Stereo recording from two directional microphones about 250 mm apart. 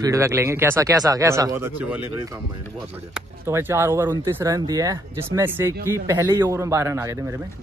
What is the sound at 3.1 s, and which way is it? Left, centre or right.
Speech, centre.